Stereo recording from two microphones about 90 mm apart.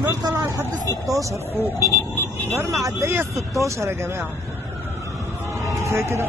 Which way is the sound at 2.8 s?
30° right (ahead or behind).